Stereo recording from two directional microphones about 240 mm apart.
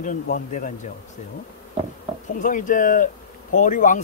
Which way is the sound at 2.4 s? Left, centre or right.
Left.